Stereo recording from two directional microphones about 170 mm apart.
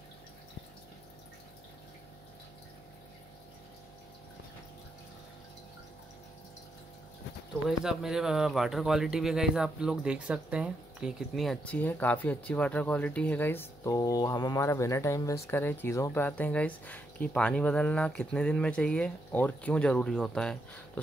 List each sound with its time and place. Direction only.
7.8 s speech: 5° right (ahead or behind)